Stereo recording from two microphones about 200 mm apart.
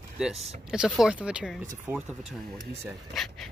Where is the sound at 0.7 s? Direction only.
5° right (ahead or behind).